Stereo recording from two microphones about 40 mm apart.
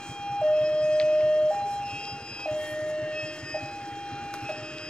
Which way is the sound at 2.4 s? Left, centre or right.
Left.